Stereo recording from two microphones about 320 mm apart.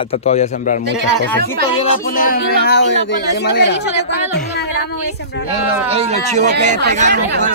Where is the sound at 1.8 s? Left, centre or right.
Left.